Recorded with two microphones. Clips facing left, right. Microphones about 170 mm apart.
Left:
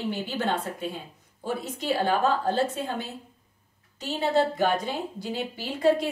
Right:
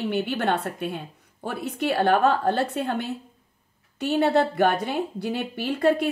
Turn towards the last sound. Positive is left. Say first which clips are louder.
# right 2 dB
turn(degrees=-60)  # may be behind; listen again after turning